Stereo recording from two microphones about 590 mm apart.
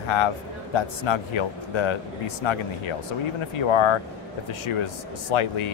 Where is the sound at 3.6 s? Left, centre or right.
Left.